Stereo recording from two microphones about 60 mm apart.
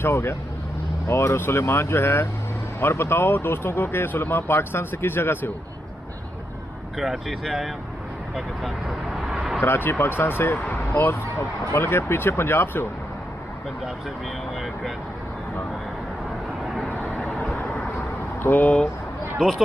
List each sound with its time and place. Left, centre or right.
0.0 s speech: left
7.0 s speech: centre
9.7 s speech: left
17.1 s vehicle: centre
18.4 s speech: left
19.3 s speech: centre